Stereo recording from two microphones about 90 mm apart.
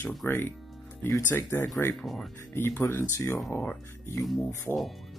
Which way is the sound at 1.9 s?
Centre (ahead or behind).